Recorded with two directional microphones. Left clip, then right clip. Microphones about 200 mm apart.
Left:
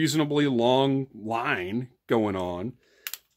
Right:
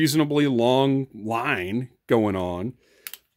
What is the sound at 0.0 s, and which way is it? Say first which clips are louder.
Speech: right 3 dB; 35° right (ahead or behind).